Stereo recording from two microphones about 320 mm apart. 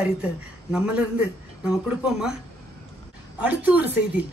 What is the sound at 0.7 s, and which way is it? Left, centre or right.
Speech, centre.